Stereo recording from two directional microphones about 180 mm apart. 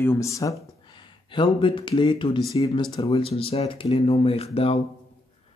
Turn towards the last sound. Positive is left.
turn(degrees=35)  # may be behind; listen again after turning